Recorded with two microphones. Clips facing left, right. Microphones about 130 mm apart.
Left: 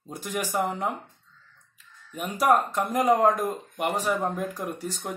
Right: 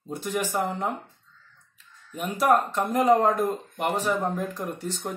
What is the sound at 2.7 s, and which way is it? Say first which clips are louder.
Speech: right 2 dB; 10° left (ahead or behind).